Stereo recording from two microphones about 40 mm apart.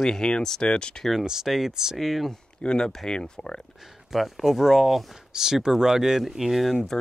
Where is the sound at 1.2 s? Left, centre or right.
Centre.